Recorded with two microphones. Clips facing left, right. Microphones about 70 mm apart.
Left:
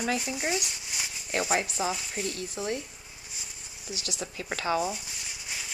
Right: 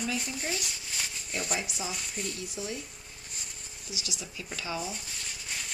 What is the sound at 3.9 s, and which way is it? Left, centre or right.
Speech, left.